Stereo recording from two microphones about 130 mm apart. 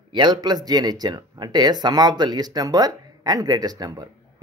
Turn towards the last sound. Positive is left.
turn(degrees=-30)  # may be behind; listen again after turning